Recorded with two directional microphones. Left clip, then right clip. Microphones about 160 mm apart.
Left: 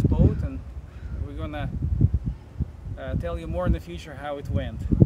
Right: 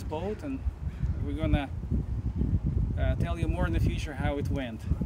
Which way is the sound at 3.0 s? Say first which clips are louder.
Left 3 dB; 25° left (ahead or behind).